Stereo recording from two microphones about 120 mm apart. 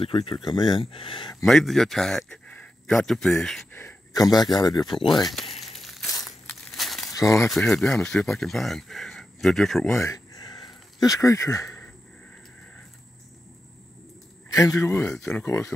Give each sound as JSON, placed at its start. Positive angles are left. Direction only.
{"t": 0.0, "sound": "speech", "side_deg": 45}
{"t": 1.4, "sound": "speech", "side_deg": 0}
{"t": 4.1, "sound": "speech", "side_deg": 35}
{"t": 5.1, "sound": "crumpling", "side_deg": 0}
{"t": 7.1, "sound": "speech", "side_deg": 25}
{"t": 7.4, "sound": "speech", "side_deg": 0}
{"t": 9.9, "sound": "a sound", "side_deg": 25}
{"t": 14.5, "sound": "a man's voice", "side_deg": 25}
{"t": 15.0, "sound": "speech", "side_deg": 10}
{"t": 15.4, "sound": "a man's voice", "side_deg": 25}